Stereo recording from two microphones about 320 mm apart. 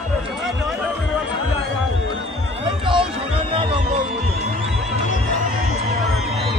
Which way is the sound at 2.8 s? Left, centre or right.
Centre.